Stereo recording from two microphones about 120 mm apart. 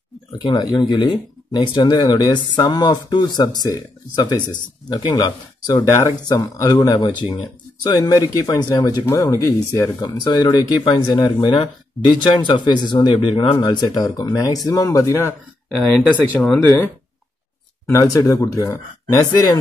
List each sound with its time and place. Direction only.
0.3 s speech: 35° left (ahead or behind)
13.6 s speech: 35° left (ahead or behind)
15.9 s speech: 5° left (ahead or behind)
17.8 s speech: 25° left (ahead or behind)